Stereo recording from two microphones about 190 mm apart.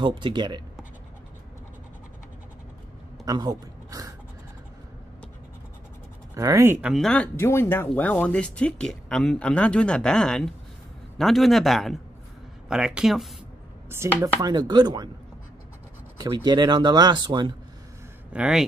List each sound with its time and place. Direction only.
0.0 s speech: 25° right (ahead or behind)
3.3 s speech: 20° right (ahead or behind)
6.3 s speech: 15° right (ahead or behind)
6.9 s speech: centre (ahead or behind)
13.8 s speech: 15° right (ahead or behind)
16.2 s speech: 20° right (ahead or behind)
18.3 s speech: 5° right (ahead or behind)